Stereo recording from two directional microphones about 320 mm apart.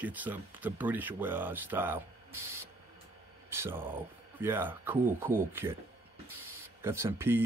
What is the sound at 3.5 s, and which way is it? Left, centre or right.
Speech, centre.